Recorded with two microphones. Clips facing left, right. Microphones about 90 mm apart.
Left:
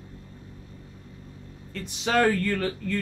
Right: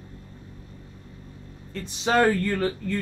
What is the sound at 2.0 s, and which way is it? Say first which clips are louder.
Speech: right 2 dB; 25° right (ahead or behind).